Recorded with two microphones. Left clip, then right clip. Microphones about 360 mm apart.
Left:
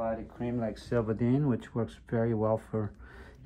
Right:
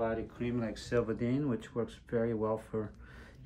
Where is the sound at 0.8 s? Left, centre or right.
Centre.